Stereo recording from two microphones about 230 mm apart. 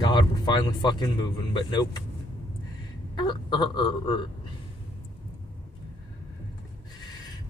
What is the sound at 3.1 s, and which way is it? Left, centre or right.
A man's voice, centre.